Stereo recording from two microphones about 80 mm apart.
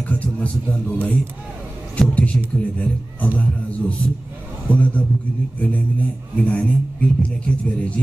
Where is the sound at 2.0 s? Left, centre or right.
Centre.